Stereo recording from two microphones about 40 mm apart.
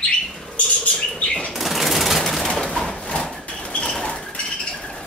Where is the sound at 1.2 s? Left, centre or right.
Left.